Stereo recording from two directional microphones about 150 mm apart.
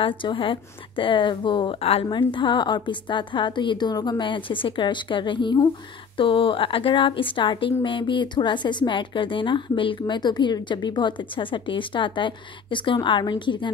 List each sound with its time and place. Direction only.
0.0 s a woman's voice: 35° left (ahead or behind)